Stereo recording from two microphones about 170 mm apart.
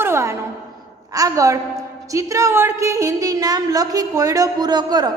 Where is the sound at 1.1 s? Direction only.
20° right (ahead or behind).